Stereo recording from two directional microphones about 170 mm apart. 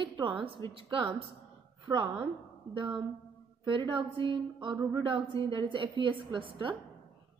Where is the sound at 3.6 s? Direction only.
30° right (ahead or behind).